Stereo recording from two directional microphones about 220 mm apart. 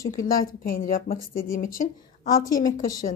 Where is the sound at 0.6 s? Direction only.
40° left (ahead or behind).